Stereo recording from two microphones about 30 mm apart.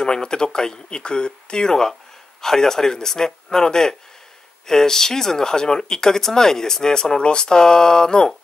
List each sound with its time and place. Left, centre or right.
0.0 s a man's voice: left